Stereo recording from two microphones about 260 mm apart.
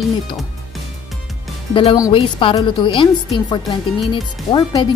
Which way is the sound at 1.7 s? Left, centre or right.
Centre.